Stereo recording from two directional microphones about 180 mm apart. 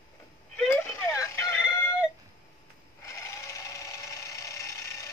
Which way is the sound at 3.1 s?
15° left (ahead or behind).